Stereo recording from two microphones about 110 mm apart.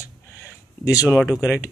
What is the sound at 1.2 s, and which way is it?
Speech, 5° right (ahead or behind).